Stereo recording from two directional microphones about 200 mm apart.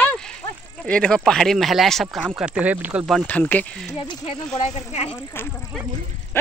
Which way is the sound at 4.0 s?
25° left (ahead or behind).